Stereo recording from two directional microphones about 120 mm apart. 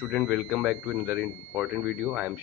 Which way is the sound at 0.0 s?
10° right (ahead or behind).